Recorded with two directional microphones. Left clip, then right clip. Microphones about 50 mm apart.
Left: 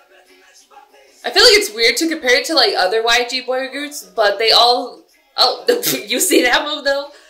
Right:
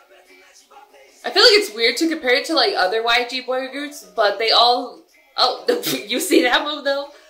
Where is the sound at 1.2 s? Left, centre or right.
Centre.